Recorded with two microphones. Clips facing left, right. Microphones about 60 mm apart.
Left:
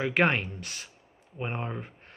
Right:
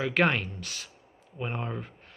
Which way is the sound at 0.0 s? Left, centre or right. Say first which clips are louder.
Even; left.